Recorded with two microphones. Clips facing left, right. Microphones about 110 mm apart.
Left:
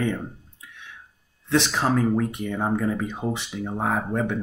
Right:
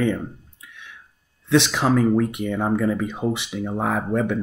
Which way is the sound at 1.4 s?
70° right (ahead or behind).